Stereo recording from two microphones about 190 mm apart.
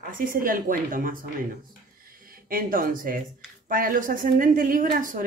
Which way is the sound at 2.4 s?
50° right (ahead or behind).